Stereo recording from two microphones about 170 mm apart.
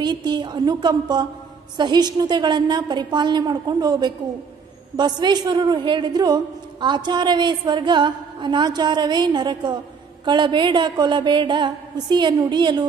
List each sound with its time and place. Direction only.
0.0 s a woman's voice: 25° right (ahead or behind)